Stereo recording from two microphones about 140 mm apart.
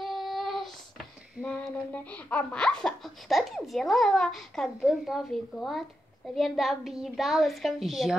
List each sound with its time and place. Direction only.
0.0 s child singing: centre (ahead or behind)
1.6 s speech: 10° left (ahead or behind)